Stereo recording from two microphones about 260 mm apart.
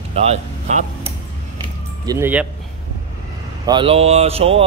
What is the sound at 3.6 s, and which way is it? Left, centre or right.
Speech, centre.